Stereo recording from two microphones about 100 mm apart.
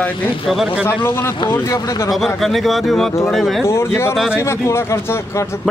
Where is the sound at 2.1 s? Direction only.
Centre (ahead or behind).